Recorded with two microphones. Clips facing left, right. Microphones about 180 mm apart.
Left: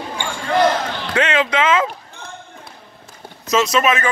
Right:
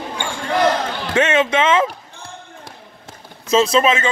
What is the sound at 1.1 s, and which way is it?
Speech, 25° right (ahead or behind).